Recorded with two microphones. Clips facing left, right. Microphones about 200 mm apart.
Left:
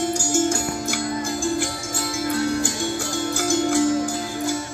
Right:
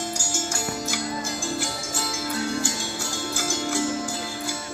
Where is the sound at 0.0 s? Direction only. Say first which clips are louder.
Left 10 dB; 55° left (ahead or behind).